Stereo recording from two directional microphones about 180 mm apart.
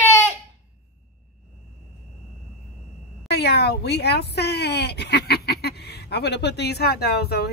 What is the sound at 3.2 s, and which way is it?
Speech, 65° left (ahead or behind).